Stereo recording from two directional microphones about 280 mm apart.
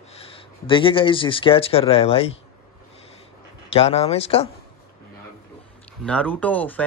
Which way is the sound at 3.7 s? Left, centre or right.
Left.